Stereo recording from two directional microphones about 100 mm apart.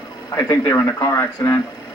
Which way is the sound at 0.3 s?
30° left (ahead or behind).